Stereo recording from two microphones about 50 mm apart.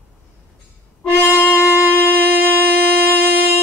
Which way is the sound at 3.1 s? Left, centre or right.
Right.